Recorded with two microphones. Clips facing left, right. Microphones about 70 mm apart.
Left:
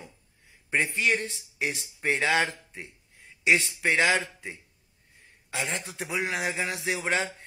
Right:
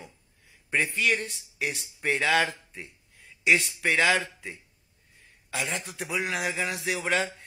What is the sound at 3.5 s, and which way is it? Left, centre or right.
Speech, left.